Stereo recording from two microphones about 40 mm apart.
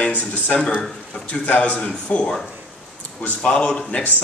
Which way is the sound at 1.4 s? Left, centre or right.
Left.